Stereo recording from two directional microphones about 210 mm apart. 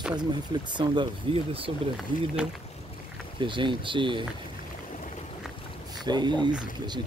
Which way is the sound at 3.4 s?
25° right (ahead or behind).